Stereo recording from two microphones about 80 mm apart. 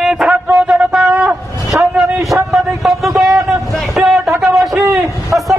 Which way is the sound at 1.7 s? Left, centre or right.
Centre.